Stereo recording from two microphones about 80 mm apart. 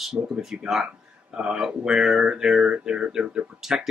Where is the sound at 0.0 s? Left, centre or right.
Centre.